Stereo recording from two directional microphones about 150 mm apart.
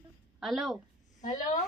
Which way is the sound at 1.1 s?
55° left (ahead or behind).